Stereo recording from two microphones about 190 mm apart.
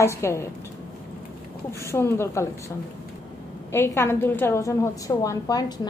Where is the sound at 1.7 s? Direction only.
15° left (ahead or behind).